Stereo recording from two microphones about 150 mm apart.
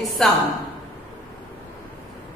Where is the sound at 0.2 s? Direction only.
5° left (ahead or behind).